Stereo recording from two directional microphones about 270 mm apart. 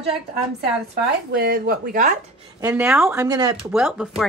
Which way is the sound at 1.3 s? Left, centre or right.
Right.